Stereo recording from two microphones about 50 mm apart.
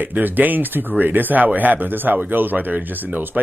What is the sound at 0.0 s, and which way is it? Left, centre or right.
Speech, right.